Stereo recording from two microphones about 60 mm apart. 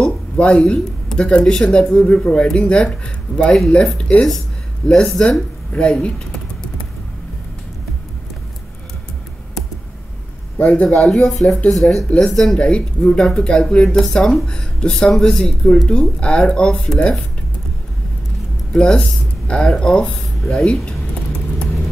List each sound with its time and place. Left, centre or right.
0.0 s a sound: centre
1.1 s speech: centre
5.7 s typing: centre
10.6 s a man's voice: left
10.9 s speech: centre
18.7 s speech: centre